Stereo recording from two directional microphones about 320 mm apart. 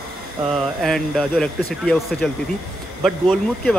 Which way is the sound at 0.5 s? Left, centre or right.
Centre.